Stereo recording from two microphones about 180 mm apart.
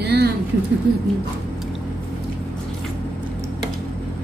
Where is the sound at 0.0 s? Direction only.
60° right (ahead or behind).